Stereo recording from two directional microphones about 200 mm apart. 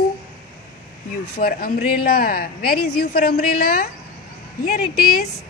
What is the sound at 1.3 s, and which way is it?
Speech, 45° left (ahead or behind).